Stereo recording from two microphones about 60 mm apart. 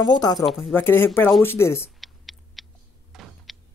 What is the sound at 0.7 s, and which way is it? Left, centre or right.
Speech, left.